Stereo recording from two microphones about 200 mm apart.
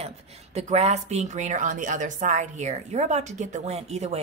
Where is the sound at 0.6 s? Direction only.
35° right (ahead or behind).